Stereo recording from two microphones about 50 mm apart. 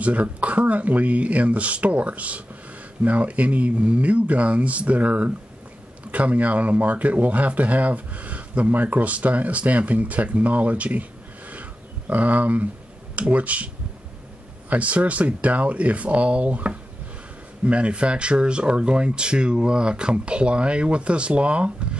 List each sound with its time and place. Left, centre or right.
0.0 s speech: right
14.7 s speech: right